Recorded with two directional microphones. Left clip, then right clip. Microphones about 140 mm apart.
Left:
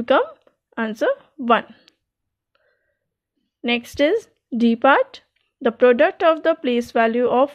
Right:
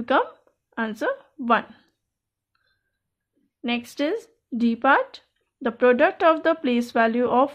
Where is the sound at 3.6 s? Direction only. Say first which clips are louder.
Left 7 dB; 50° left (ahead or behind).